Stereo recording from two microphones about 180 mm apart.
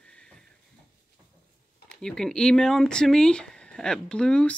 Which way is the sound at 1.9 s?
5° left (ahead or behind).